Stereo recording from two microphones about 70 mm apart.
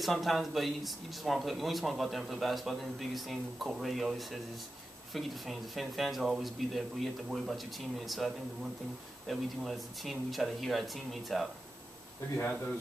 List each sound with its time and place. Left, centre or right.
0.0 s speech: centre
9.3 s speech: centre
12.4 s speech: left